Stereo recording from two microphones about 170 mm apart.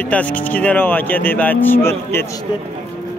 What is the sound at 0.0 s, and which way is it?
A man's voice, 10° left (ahead or behind).